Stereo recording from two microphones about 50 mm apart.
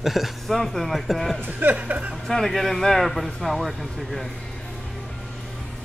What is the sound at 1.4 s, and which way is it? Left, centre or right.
Speech, right.